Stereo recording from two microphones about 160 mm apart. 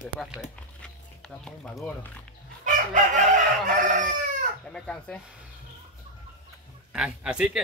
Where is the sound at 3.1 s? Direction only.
55° right (ahead or behind).